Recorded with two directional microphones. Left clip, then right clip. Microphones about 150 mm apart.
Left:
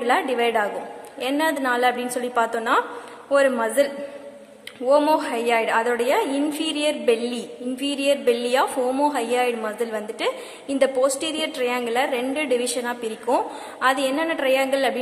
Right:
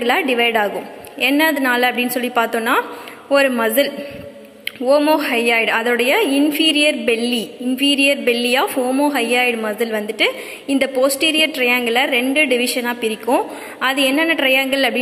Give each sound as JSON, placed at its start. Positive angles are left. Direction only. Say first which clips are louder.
{"t": 0.0, "sound": "a woman's voice", "louder": "right 4 dB", "side_deg": -5}
{"t": 4.8, "sound": "a woman's voice", "louder": "right 4 dB", "side_deg": -5}